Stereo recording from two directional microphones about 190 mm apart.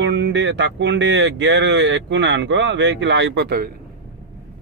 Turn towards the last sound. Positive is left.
turn(degrees=-55)  # may be behind; listen again after turning